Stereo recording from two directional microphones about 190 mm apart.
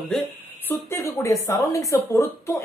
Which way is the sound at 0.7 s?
15° left (ahead or behind).